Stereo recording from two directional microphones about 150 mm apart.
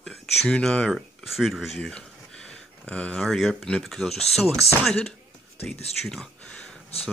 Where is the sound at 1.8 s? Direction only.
5° left (ahead or behind).